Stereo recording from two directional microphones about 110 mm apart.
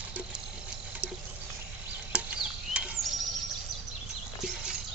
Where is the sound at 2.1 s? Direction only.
10° right (ahead or behind).